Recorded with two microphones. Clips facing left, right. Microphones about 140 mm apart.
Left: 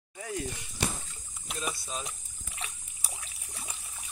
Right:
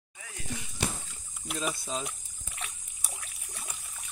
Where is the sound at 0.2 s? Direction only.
35° left (ahead or behind).